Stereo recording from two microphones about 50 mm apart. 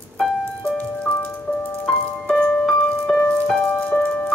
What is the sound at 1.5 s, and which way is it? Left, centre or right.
Music, left.